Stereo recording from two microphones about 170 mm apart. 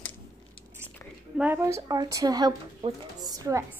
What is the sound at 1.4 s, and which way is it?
A child's voice, 15° right (ahead or behind).